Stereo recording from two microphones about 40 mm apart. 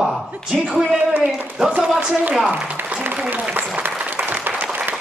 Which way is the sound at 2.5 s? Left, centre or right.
Right.